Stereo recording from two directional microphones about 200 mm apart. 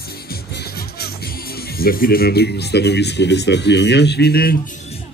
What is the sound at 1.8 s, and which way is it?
Speech, 45° left (ahead or behind).